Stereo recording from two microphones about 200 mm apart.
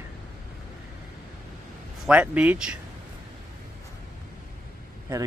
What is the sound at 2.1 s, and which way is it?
Speech, 5° right (ahead or behind).